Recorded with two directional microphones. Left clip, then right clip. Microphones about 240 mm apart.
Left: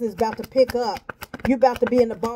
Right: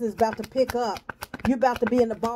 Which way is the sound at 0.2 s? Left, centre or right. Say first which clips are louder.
Left 4 dB; centre.